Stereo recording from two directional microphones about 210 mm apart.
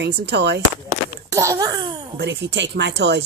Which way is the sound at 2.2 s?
55° right (ahead or behind).